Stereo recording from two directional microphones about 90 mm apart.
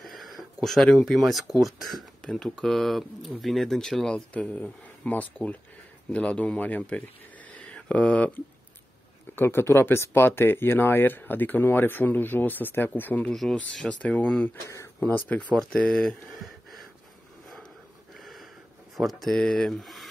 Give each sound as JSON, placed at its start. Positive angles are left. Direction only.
{"t": 0.0, "sound": "a sound", "side_deg": 0}
{"t": 1.1, "sound": "speech", "side_deg": 0}
{"t": 9.3, "sound": "speech", "side_deg": 25}
{"t": 13.3, "sound": "speech", "side_deg": 5}
{"t": 15.7, "sound": "speech", "side_deg": 5}
{"t": 18.2, "sound": "a sound", "side_deg": 0}
{"t": 18.9, "sound": "speech", "side_deg": 0}